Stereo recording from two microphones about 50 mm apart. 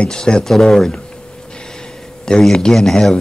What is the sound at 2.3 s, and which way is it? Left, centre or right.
Speech, centre.